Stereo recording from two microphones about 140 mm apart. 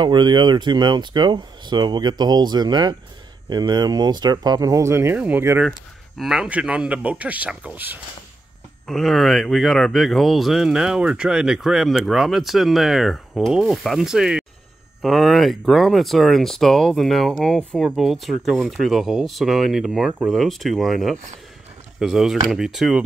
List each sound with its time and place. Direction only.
0.0 s speech: 35° right (ahead or behind); by 5.7 s 15° right (ahead or behind)
5.7 s speech: centre (ahead or behind)
8.8 s speech: 5° left (ahead or behind)